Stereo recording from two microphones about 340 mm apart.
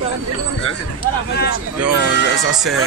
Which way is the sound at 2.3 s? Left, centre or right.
Centre.